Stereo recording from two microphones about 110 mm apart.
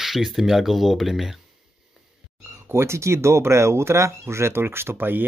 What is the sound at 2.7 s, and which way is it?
Speech, 25° right (ahead or behind).